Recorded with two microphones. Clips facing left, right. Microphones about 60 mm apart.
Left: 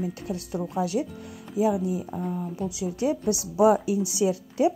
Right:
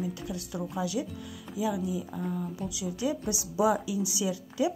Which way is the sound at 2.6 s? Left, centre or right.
Left.